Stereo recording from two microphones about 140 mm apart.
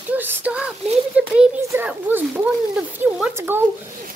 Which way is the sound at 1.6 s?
20° right (ahead or behind).